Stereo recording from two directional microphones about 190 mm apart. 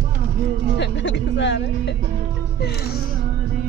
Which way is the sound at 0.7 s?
70° left (ahead or behind).